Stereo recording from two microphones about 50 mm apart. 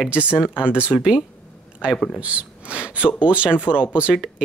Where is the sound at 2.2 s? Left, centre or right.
Right.